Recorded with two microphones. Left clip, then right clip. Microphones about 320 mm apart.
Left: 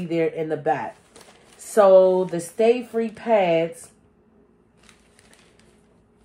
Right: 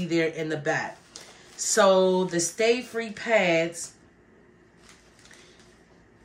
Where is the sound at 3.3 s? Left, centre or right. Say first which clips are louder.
Left 3 dB; left.